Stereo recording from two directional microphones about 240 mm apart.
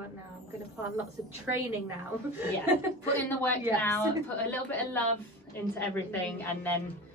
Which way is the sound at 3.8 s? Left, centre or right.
Centre.